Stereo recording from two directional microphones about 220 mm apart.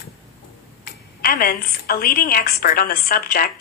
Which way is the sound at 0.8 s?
40° left (ahead or behind).